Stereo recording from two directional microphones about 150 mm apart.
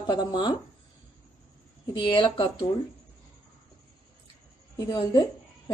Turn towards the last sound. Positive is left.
turn(degrees=30)  # may be behind; listen again after turning